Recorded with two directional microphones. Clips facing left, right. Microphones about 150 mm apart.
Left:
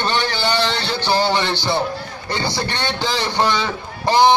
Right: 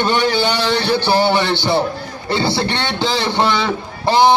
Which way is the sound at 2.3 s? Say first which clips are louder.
Right 5 dB; 15° left (ahead or behind).